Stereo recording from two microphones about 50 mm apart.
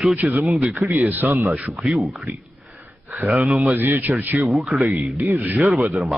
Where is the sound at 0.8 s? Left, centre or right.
Right.